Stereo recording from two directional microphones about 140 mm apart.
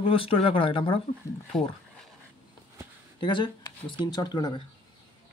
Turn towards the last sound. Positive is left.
turn(degrees=30)  # may be behind; listen again after turning